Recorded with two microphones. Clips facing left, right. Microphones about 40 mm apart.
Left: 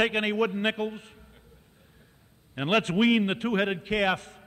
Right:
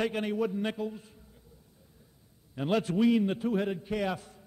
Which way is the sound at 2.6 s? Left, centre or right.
Left.